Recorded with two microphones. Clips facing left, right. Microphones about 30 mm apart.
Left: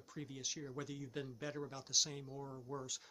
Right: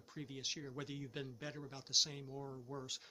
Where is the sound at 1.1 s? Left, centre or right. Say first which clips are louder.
Left 2 dB; centre.